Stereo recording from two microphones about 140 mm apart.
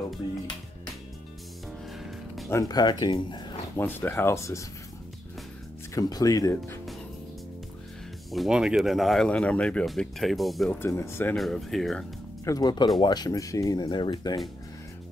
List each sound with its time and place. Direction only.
2.0 s music: centre (ahead or behind)
2.7 s speech: 30° left (ahead or behind)
3.7 s speech: 15° left (ahead or behind)
5.9 s speech: 25° left (ahead or behind)
8.3 s speech: 5° right (ahead or behind)
10.8 s speech: 20° left (ahead or behind)
11.3 s speech: centre (ahead or behind)
12.4 s speech: 25° left (ahead or behind)